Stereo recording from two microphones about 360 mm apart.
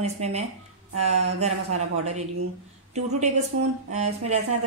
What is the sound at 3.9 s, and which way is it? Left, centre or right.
Speech, centre.